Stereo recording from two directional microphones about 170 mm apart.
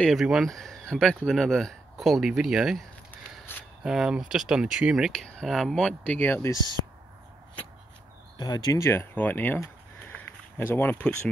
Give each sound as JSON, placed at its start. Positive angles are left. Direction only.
{"t": 0.0, "sound": "speech", "side_deg": 0}
{"t": 3.8, "sound": "speech", "side_deg": -5}
{"t": 8.4, "sound": "speech", "side_deg": 25}